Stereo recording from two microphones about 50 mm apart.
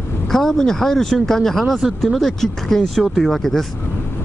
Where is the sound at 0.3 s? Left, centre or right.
Centre.